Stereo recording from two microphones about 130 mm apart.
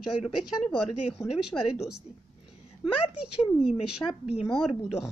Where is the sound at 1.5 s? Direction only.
15° left (ahead or behind).